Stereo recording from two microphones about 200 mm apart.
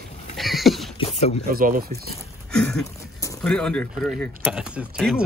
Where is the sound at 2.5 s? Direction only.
5° left (ahead or behind).